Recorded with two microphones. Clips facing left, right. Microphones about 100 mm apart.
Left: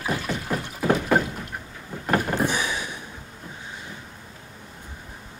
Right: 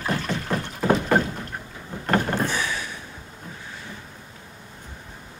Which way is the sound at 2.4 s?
15° left (ahead or behind).